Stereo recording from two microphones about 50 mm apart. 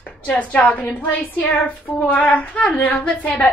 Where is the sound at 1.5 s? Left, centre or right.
Left.